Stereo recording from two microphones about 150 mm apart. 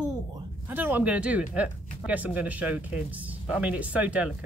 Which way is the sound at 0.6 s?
15° right (ahead or behind).